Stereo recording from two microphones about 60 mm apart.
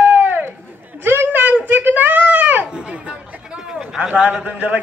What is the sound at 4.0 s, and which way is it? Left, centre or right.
Speech, right.